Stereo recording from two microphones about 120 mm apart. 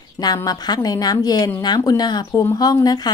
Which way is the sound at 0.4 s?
35° left (ahead or behind).